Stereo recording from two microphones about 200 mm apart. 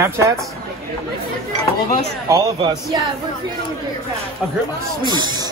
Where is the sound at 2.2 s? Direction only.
15° right (ahead or behind).